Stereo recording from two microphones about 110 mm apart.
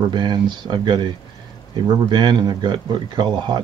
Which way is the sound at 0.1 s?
45° right (ahead or behind).